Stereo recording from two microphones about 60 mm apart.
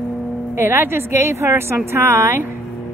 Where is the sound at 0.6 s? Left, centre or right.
Right.